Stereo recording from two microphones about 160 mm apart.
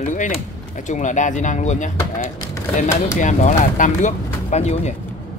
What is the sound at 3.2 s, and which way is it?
Speech, 50° left (ahead or behind).